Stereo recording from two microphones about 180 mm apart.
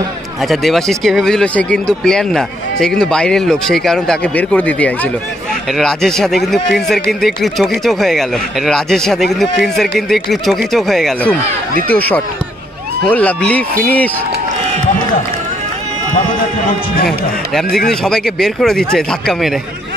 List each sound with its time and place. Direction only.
0.4 s speech: centre (ahead or behind)
17.6 s speech: 60° left (ahead or behind)
18.0 s speech: 5° left (ahead or behind)